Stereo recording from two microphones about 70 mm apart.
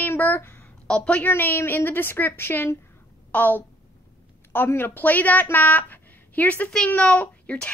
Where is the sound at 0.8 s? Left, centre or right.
Centre.